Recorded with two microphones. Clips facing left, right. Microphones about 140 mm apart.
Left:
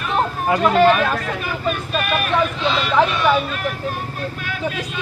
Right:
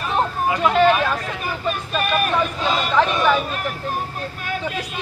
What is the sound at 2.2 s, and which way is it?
Speech, 40° right (ahead or behind).